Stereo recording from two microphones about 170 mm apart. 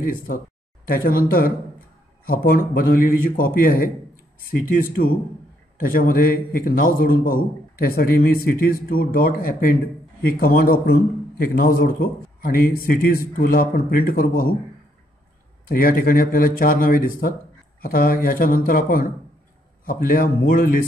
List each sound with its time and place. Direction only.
0.0 s a man's voice: 55° left (ahead or behind)
15.8 s a man's voice: 55° left (ahead or behind)